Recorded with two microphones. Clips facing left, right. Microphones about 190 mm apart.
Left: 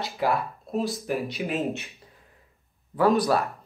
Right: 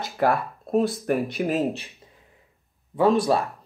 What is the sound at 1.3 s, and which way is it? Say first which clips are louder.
Speech: right 4 dB; 40° right (ahead or behind).